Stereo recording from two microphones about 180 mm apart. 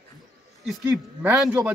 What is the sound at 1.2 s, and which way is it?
Speech, 5° right (ahead or behind).